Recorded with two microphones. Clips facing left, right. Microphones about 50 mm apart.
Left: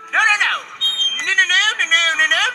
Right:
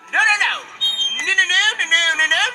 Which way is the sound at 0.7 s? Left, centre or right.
Left.